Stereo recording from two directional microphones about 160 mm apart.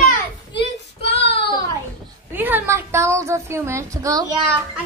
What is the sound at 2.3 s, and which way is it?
Speech, 10° right (ahead or behind).